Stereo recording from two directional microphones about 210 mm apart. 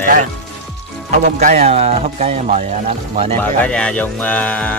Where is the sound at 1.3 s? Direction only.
35° right (ahead or behind).